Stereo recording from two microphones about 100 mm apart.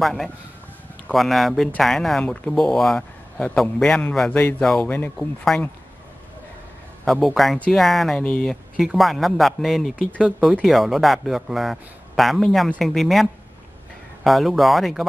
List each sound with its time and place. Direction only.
0.0 s a man's voice: centre (ahead or behind)
4.3 s speech: 20° left (ahead or behind)
4.6 s a man's voice: 5° left (ahead or behind)
4.8 s speech: 15° left (ahead or behind)
7.1 s a man's voice: centre (ahead or behind)